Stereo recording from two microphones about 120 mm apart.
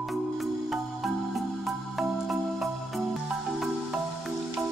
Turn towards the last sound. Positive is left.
turn(degrees=0)  # may be behind; listen again after turning